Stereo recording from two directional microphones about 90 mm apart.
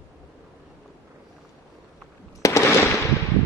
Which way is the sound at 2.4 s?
35° left (ahead or behind).